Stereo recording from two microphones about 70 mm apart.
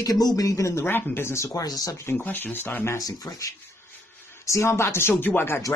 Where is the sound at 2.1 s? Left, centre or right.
Left.